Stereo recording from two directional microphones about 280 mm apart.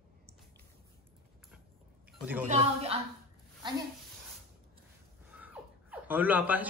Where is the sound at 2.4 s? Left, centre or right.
Right.